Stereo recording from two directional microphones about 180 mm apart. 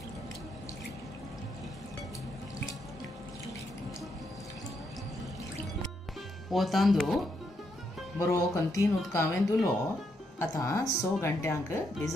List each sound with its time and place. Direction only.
6.5 s speech: centre (ahead or behind)
8.2 s speech: 15° left (ahead or behind)